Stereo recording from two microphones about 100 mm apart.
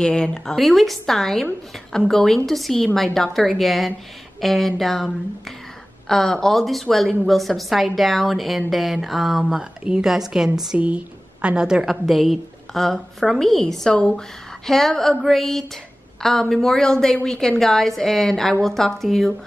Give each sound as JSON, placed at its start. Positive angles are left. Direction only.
{"t": 0.0, "sound": "a woman's voice", "side_deg": 10}